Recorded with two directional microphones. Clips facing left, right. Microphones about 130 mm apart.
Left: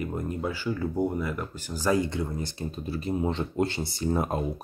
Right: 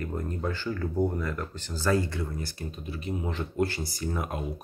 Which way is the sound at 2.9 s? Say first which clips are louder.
Left 6 dB; 35° left (ahead or behind).